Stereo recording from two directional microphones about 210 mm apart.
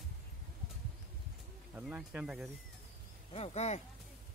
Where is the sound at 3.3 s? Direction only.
30° left (ahead or behind).